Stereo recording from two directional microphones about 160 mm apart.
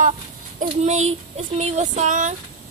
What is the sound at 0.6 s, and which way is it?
Speech, 45° right (ahead or behind).